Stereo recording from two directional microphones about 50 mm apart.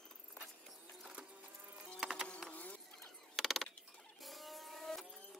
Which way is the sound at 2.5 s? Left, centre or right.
Left.